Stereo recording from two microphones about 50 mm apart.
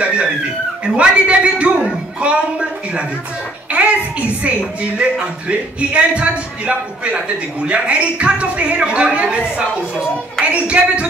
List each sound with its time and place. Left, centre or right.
0.0 s a sound: right
0.9 s speech: right
3.7 s speech: right